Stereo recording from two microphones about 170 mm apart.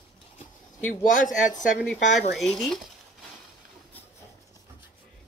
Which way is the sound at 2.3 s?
Centre (ahead or behind).